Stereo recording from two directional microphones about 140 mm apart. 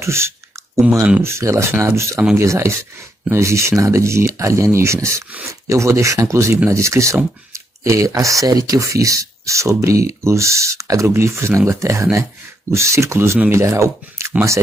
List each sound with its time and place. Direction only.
0.0 s speech: 20° right (ahead or behind)